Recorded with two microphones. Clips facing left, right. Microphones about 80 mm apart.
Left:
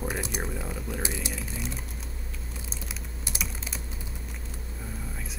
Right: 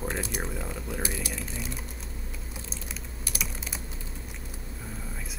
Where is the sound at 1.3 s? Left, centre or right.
Centre.